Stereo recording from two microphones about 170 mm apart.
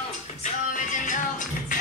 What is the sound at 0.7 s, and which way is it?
Music, 50° left (ahead or behind).